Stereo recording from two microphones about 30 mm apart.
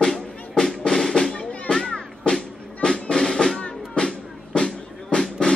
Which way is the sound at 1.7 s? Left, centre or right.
Centre.